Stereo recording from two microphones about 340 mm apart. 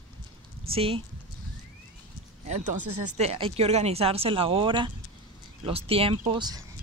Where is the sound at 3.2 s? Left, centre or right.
Centre.